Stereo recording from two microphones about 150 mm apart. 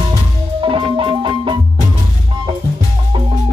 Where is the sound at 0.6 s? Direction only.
35° right (ahead or behind).